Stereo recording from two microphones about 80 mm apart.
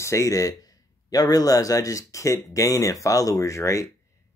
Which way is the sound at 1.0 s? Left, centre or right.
Left.